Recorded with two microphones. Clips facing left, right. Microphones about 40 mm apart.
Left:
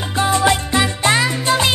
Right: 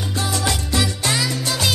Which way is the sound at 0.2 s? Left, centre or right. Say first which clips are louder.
Left 9 dB; left.